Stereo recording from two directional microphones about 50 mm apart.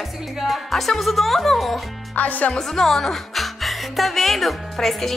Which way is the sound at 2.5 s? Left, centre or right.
Centre.